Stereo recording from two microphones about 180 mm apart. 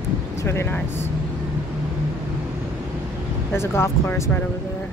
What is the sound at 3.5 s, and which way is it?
Speech, 15° left (ahead or behind).